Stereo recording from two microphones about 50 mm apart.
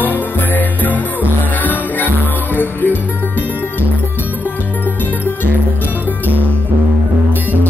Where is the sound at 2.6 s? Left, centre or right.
Left.